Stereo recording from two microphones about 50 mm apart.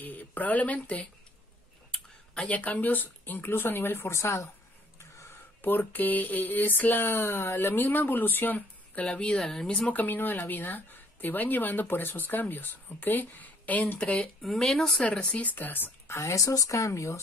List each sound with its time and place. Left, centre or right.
0.0 s speech: left
2.3 s speech: left
4.1 s speech: left
5.6 s speech: left
9.0 s speech: left
9.4 s speech: centre
9.7 s speech: left
9.9 s speech: left
14.4 s speech: centre
15.0 s speech: left
15.5 s speech: left
16.1 s speech: left